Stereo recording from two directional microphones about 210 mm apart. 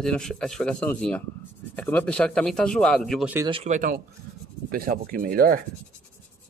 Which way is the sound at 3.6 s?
40° right (ahead or behind).